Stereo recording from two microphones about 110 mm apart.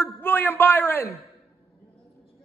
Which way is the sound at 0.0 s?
20° left (ahead or behind).